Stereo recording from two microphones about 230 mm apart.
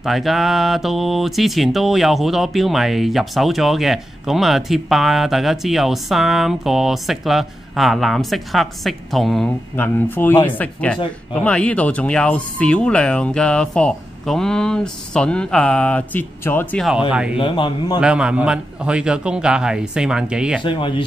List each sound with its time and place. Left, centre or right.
0.0 s mantra: centre
10.4 s speech: centre
11.3 s mantra: centre
17.4 s speech: left
18.0 s mantra: centre
20.6 s speech: left